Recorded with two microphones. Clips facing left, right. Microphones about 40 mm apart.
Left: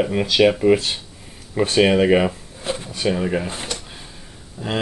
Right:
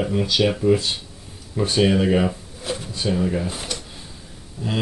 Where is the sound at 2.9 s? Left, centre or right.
Left.